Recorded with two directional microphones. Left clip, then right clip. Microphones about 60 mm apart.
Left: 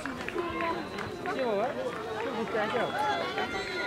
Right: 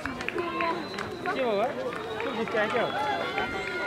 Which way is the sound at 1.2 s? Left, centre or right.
Right.